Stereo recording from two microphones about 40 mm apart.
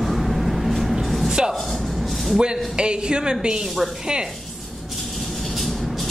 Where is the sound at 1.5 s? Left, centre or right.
Centre.